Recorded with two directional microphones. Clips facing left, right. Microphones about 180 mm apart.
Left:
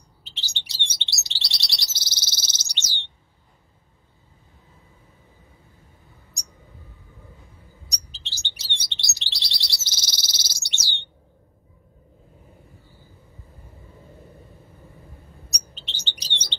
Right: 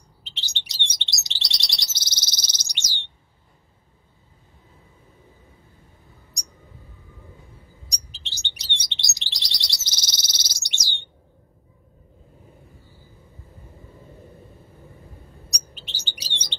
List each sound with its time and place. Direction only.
0.2 s chirp: 20° right (ahead or behind)
7.9 s chirp: 15° right (ahead or behind)
15.7 s chirp: 10° right (ahead or behind)